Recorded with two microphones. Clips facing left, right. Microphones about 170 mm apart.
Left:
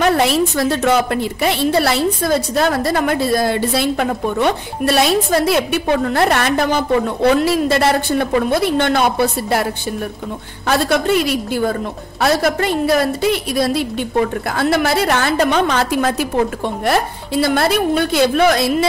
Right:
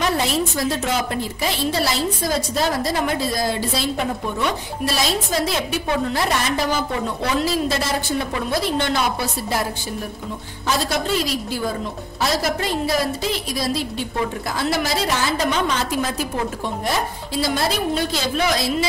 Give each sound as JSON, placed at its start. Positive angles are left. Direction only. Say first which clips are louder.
{"t": 0.0, "sound": "a woman's voice", "louder": "left 6 dB", "side_deg": 65}
{"t": 10.7, "sound": "a woman's voice", "louder": "left 6 dB", "side_deg": 60}